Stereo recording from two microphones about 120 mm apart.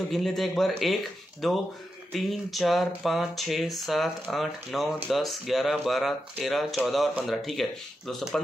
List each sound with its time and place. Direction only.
0.1 s speech: centre (ahead or behind)